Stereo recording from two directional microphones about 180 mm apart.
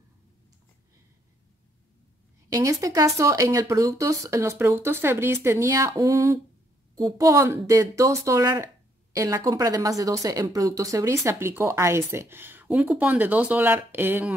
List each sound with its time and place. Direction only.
2.5 s speech: 20° right (ahead or behind)